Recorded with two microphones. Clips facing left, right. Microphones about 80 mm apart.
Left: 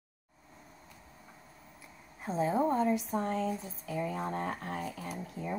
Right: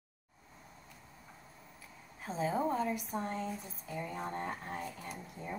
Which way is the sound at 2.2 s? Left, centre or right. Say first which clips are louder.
Left 4 dB; centre.